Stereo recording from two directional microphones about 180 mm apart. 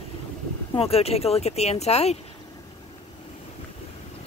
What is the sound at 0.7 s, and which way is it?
Speech, 35° left (ahead or behind).